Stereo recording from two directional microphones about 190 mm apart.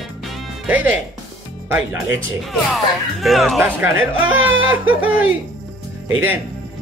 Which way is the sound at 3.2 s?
Centre (ahead or behind).